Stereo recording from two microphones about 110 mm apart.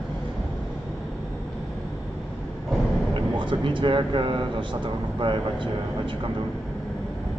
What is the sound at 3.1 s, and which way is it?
Speech, 50° right (ahead or behind).